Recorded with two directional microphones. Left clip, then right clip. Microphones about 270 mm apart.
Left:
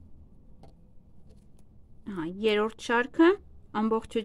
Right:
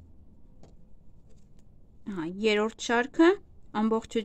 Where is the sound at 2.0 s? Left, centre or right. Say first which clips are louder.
Even; centre.